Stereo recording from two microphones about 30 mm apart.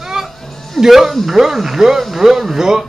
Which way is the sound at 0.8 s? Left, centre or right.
Centre.